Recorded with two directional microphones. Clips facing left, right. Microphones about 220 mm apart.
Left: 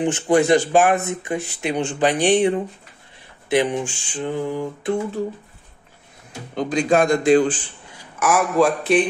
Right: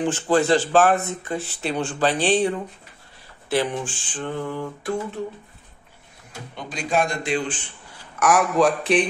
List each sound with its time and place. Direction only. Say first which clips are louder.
0.0 s a sound: left 3 dB; 15° left (ahead or behind)
6.5 s a man's voice: left 7 dB; 45° left (ahead or behind)
8.2 s a man's voice: left 1 dB; centre (ahead or behind)